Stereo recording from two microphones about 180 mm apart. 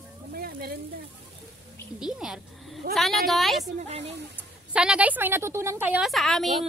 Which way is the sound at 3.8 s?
35° right (ahead or behind).